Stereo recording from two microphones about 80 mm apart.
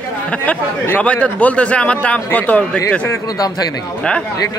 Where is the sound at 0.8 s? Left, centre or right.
Centre.